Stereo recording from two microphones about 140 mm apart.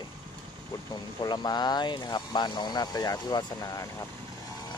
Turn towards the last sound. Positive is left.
turn(degrees=25)  # may be behind; listen again after turning